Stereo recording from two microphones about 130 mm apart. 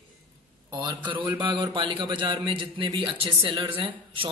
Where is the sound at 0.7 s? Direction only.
35° right (ahead or behind).